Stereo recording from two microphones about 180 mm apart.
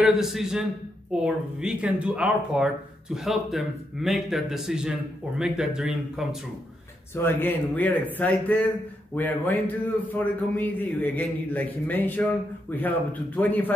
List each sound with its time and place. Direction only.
0.0 s speech: centre (ahead or behind)
7.2 s a man's voice: 10° left (ahead or behind)